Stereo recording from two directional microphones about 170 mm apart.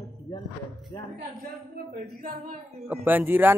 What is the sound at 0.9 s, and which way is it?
Speech, 10° left (ahead or behind).